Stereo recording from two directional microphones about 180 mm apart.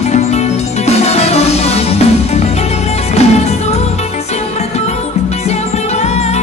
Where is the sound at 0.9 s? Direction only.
35° left (ahead or behind).